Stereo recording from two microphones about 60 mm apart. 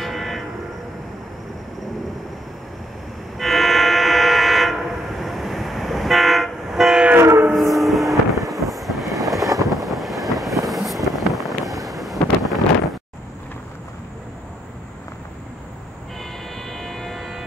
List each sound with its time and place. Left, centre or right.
0.0 s train: centre
3.3 s train: centre
7.2 s train: right
7.7 s vehicle: centre
11.1 s wind noise: centre
16.5 s a sound: centre